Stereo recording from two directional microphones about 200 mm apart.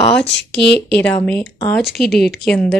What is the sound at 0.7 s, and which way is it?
A woman's voice, 5° left (ahead or behind).